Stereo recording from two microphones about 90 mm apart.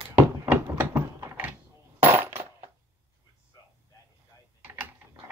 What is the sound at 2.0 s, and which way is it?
Coin, 25° right (ahead or behind).